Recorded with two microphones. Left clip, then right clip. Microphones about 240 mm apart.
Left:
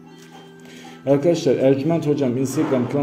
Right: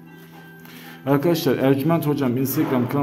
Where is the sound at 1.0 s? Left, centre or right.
Centre.